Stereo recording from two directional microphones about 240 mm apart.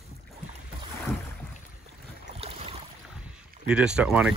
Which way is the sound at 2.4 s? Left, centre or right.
Right.